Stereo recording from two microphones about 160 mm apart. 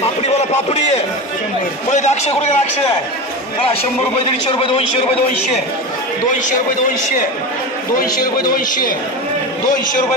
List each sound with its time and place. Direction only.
0.0 s a sound: 40° left (ahead or behind)
1.9 s a man's voice: 45° left (ahead or behind)
4.5 s a man's voice: 35° left (ahead or behind)
8.5 s a man's voice: 60° left (ahead or behind)